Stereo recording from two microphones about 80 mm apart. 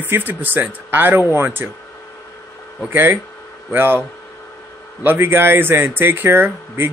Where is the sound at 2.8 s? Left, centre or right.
Right.